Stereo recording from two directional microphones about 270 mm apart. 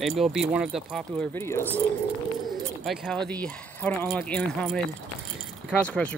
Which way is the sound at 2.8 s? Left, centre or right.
Centre.